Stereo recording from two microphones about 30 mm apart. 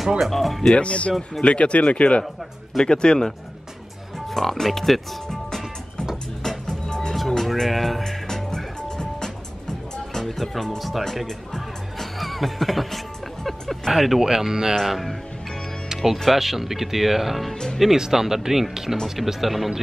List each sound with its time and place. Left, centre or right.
0.3 s speech: centre
0.7 s speech: left
2.8 s speech: left
4.3 s speech: centre
6.7 s music: left
7.2 s music: centre
8.5 s music: left
10.3 s speech: centre
11.2 s music: centre
12.2 s speech: centre
14.2 s speech: centre
14.9 s speech: centre
15.9 s music: right
16.3 s speech: centre